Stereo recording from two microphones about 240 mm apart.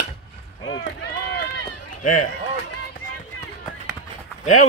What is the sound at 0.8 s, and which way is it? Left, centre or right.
Run, left.